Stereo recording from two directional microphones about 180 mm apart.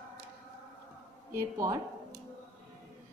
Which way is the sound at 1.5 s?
20° right (ahead or behind).